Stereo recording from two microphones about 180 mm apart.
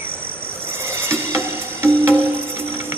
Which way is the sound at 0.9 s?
15° right (ahead or behind).